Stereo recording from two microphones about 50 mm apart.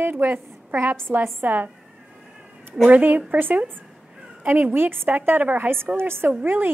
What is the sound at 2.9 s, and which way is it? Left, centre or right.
Speech, right.